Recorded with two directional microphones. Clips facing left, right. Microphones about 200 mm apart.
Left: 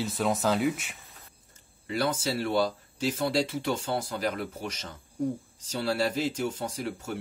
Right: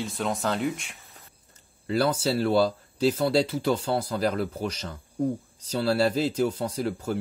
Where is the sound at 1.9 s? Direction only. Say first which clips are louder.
Right 5 dB; 35° right (ahead or behind).